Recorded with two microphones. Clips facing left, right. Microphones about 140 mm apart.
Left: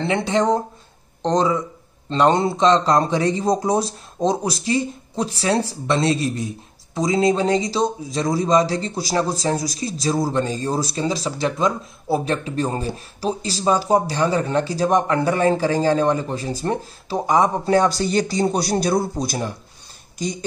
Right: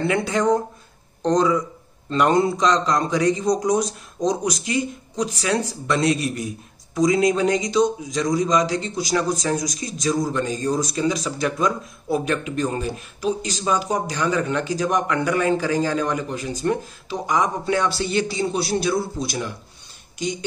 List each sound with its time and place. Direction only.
0.0 s a man's voice: 25° left (ahead or behind)